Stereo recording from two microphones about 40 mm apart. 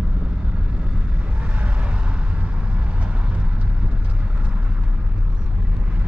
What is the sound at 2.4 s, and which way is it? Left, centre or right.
Vehicle, right.